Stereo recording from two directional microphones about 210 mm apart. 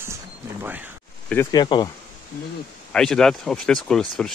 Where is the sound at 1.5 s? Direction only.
20° left (ahead or behind).